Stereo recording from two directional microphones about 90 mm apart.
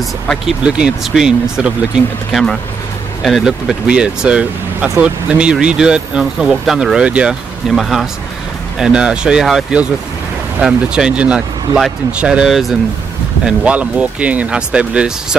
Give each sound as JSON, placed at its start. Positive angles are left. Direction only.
{"t": 0.7, "sound": "speech", "side_deg": -10}
{"t": 3.2, "sound": "speech", "side_deg": -5}